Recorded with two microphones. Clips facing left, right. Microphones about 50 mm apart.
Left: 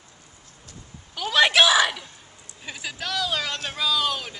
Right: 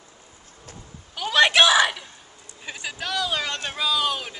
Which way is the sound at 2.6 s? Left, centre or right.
Centre.